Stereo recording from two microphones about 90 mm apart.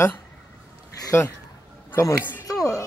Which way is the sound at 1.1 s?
30° left (ahead or behind).